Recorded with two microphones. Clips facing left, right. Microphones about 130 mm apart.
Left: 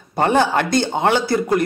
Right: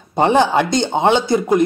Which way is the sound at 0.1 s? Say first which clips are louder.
Right 3 dB; 20° right (ahead or behind).